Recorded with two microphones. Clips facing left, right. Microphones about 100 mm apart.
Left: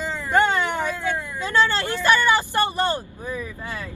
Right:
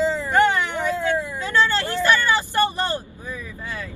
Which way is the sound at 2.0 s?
15° left (ahead or behind).